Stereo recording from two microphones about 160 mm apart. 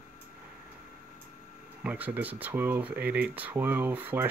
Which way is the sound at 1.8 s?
10° right (ahead or behind).